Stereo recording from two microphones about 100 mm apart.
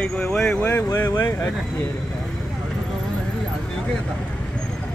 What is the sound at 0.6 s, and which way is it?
Speech, 20° left (ahead or behind).